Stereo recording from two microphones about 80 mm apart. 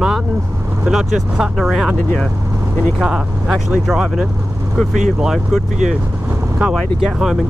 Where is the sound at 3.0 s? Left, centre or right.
Centre.